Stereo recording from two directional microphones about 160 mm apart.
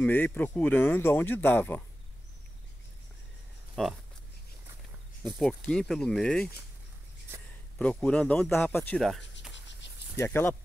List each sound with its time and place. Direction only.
0.0 s speech: 10° left (ahead or behind)
3.7 s speech: centre (ahead or behind)
5.4 s speech: 5° left (ahead or behind)
7.8 s speech: 10° left (ahead or behind)
10.1 s speech: 15° left (ahead or behind)